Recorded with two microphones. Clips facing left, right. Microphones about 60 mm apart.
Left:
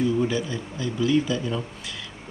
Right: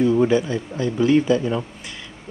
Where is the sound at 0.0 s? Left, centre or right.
Right.